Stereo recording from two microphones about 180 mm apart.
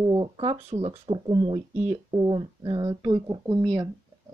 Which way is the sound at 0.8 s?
30° right (ahead or behind).